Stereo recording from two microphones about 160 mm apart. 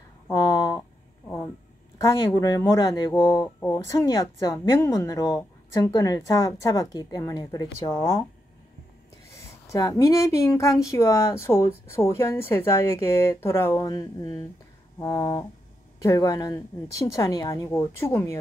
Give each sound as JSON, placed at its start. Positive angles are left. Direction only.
{"t": 0.3, "sound": "a sound", "side_deg": 25}
{"t": 2.1, "sound": "a woman's voice", "side_deg": 25}
{"t": 9.3, "sound": "a woman's voice", "side_deg": 20}